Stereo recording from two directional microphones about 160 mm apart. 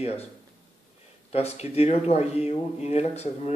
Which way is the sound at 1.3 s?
40° left (ahead or behind).